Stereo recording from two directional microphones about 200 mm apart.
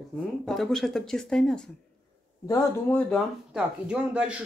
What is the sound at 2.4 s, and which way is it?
Speech, 15° left (ahead or behind).